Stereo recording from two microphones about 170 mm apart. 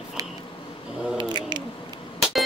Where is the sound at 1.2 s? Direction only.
25° right (ahead or behind).